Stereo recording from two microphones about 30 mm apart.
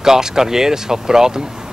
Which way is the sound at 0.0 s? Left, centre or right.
Centre.